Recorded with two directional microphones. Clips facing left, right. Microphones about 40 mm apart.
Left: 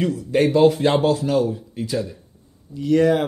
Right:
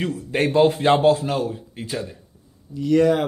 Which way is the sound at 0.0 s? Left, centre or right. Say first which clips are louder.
Left 4 dB; right.